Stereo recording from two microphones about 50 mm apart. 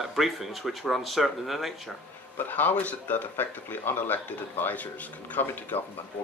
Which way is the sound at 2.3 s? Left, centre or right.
Left.